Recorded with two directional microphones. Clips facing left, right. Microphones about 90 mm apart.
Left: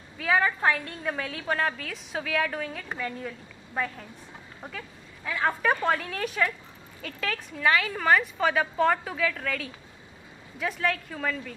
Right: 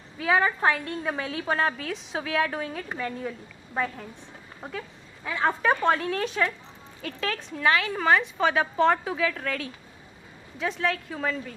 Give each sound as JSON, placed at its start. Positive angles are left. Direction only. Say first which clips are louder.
{"t": 0.2, "sound": "a woman's voice", "louder": "right 1 dB", "side_deg": -15}
{"t": 7.1, "sound": "a woman's voice", "louder": "right 2 dB", "side_deg": 0}